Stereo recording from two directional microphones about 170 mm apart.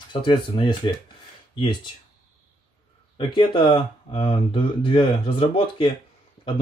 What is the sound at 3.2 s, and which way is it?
Speech, 30° left (ahead or behind).